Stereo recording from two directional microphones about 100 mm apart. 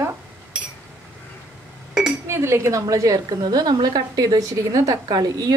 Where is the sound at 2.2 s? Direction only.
25° right (ahead or behind).